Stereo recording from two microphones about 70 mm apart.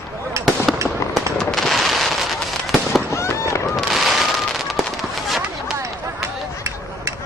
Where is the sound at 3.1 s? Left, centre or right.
Left.